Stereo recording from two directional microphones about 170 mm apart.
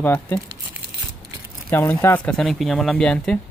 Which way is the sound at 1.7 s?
15° left (ahead or behind).